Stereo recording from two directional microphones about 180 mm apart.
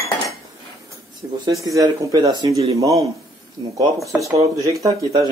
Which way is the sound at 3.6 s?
15° right (ahead or behind).